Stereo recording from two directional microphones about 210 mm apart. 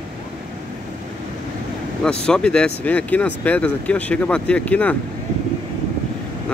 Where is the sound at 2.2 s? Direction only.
5° left (ahead or behind).